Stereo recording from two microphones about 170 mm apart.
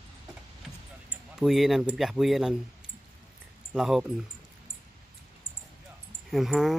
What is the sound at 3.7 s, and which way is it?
Speech, 5° right (ahead or behind).